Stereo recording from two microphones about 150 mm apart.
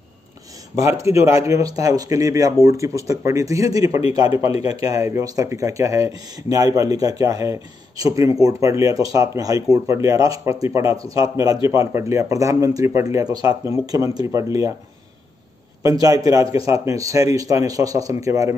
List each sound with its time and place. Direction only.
0.8 s speech: 20° right (ahead or behind)
15.8 s speech: 25° right (ahead or behind)